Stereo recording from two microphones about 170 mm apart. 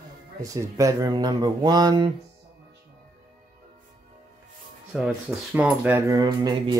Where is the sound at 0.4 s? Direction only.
20° right (ahead or behind).